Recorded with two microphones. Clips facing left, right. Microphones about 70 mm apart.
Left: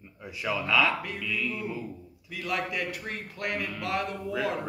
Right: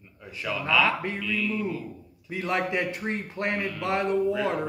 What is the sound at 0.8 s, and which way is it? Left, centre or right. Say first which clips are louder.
Speech: right 3 dB; right.